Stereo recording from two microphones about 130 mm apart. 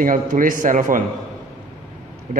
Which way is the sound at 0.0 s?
90° right.